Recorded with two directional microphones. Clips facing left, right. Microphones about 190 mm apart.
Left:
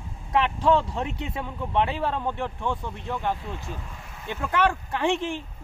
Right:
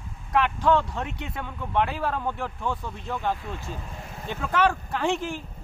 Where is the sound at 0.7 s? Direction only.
30° left (ahead or behind).